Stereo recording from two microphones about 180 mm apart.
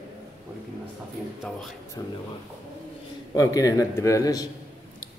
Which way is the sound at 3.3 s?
20° left (ahead or behind).